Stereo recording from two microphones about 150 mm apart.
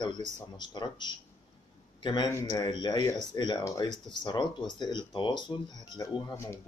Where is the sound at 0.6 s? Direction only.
30° left (ahead or behind).